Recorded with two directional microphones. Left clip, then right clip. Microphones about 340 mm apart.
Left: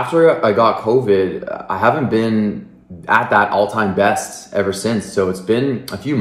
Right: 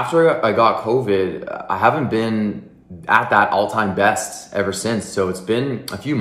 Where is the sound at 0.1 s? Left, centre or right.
Centre.